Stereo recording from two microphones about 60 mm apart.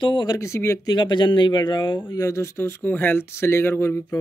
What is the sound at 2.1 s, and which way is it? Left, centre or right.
Speech, left.